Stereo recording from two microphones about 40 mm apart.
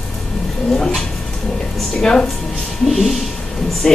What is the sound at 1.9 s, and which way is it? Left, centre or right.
Speech, centre.